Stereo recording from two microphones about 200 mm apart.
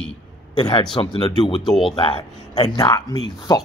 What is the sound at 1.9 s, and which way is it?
A man's voice, 25° left (ahead or behind).